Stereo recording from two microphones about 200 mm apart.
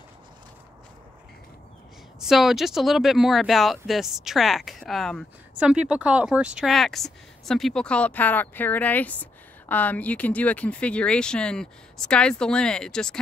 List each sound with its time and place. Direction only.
2.1 s speech: centre (ahead or behind)